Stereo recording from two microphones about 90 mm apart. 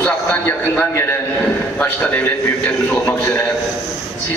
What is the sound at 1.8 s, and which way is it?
A man's voice, 20° left (ahead or behind).